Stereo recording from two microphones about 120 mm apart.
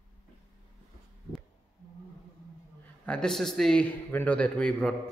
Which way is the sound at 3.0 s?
5° left (ahead or behind).